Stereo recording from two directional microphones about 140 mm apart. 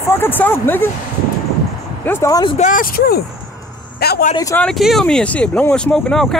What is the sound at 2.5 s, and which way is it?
Speech, 65° left (ahead or behind).